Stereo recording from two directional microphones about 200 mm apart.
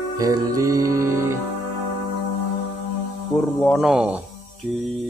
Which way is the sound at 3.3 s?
10° left (ahead or behind).